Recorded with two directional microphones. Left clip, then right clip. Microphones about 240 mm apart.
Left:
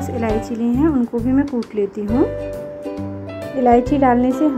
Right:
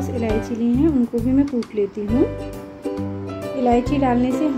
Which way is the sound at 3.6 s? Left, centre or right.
Centre.